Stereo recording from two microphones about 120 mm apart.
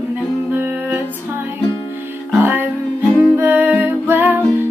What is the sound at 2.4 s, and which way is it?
Music, 15° right (ahead or behind).